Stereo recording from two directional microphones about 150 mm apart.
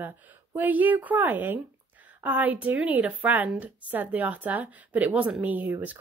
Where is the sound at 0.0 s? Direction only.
15° right (ahead or behind).